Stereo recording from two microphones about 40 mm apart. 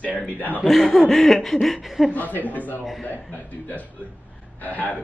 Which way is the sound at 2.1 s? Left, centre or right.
Left.